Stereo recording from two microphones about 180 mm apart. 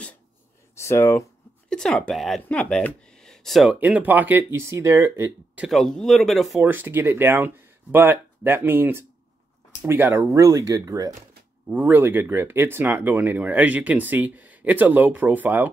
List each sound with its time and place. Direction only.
0.7 s speech: 15° left (ahead or behind)
1.7 s speech: 5° left (ahead or behind); by 5.7 s 15° right (ahead or behind)
5.7 s speech: centre (ahead or behind)
6.6 s speech: 10° right (ahead or behind)
11.6 s speech: 10° right (ahead or behind)